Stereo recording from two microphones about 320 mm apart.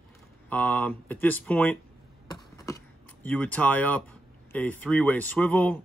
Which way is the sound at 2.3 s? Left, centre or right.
Centre.